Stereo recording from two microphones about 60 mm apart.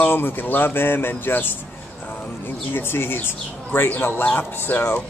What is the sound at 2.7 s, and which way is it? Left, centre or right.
Speech, left.